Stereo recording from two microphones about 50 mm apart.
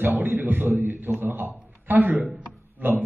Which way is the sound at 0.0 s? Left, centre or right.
Right.